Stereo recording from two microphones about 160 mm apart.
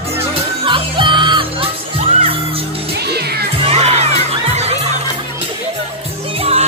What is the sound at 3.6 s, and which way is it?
Children shouting, 40° right (ahead or behind).